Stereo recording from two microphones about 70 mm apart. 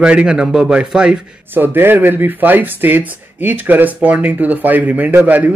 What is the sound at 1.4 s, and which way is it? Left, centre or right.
Speech, right.